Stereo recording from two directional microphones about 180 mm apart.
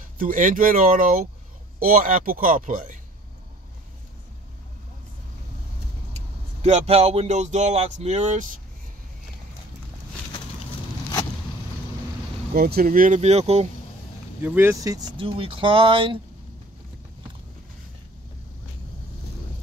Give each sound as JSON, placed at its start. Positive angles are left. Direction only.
{"t": 0.2, "sound": "speech", "side_deg": -50}
{"t": 6.6, "sound": "speech", "side_deg": -35}
{"t": 12.5, "sound": "speech", "side_deg": -60}
{"t": 14.4, "sound": "speech", "side_deg": -10}